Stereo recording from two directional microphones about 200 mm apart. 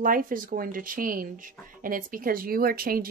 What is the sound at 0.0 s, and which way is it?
Speech, 45° right (ahead or behind).